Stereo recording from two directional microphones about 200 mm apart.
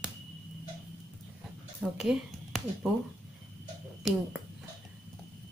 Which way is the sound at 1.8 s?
Centre (ahead or behind).